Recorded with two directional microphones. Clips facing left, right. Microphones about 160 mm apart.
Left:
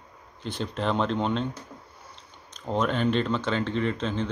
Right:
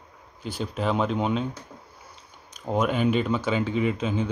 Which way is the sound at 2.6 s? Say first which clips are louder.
Right 2 dB; 10° right (ahead or behind).